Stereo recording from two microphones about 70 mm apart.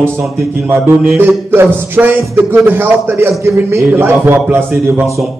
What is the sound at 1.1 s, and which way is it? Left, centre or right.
Speech, right.